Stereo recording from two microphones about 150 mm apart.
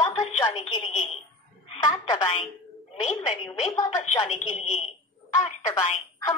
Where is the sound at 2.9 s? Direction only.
45° left (ahead or behind).